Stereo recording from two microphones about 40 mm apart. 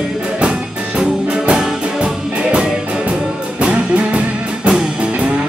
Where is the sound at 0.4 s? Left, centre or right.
Right.